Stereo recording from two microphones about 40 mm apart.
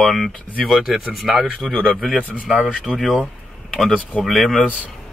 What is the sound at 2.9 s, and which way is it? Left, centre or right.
Speech, centre.